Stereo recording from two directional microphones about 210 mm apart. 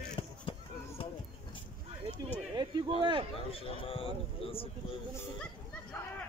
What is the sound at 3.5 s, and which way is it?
Speech, 25° left (ahead or behind).